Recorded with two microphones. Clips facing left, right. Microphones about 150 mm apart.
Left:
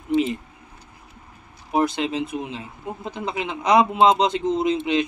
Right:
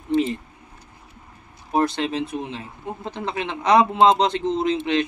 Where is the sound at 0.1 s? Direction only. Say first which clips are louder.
Even; 15° left (ahead or behind).